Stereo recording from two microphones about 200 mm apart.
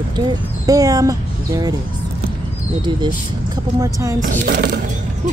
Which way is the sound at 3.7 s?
15° right (ahead or behind).